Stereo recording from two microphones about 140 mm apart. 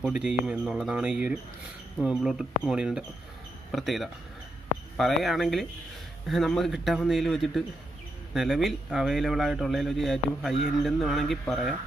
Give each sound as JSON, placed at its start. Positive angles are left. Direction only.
{"t": 0.0, "sound": "speech", "side_deg": -5}